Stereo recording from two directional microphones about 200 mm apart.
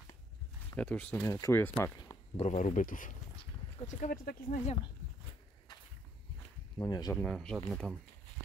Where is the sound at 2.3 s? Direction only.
35° left (ahead or behind).